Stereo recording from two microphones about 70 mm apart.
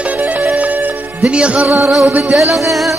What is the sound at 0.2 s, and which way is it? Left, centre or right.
Music, right.